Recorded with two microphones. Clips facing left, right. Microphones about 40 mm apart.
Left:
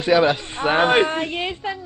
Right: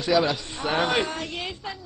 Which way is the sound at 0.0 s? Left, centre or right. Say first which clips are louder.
Left 5 dB; left.